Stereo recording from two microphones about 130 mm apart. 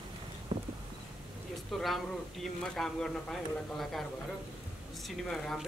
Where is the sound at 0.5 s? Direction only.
40° right (ahead or behind).